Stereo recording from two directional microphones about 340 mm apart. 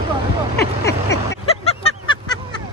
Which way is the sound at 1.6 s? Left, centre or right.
Centre.